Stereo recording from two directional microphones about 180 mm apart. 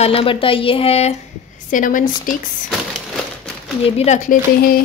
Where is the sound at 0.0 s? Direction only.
30° left (ahead or behind).